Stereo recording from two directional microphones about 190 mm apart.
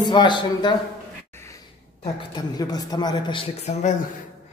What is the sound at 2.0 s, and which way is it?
A woman's voice, 25° left (ahead or behind).